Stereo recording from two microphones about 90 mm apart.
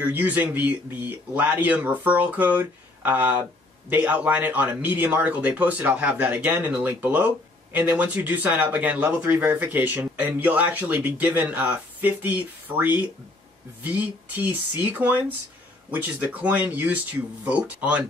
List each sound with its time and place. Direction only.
0.1 s speech: 20° right (ahead or behind)